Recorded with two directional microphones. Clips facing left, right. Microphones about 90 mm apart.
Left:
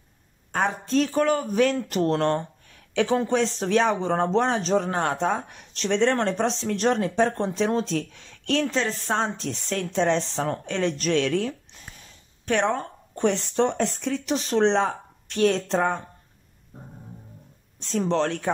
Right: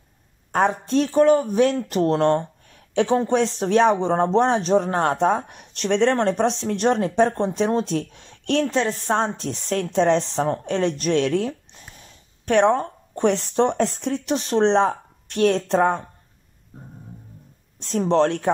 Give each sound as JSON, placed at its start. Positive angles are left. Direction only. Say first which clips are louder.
{"t": 0.5, "sound": "speech", "louder": "right 5 dB", "side_deg": -40}
{"t": 6.4, "sound": "speech", "louder": "right 3 dB", "side_deg": -45}
{"t": 17.7, "sound": "speech", "louder": "right 2 dB", "side_deg": -60}
{"t": 18.0, "sound": "speech", "louder": "right 6 dB", "side_deg": -40}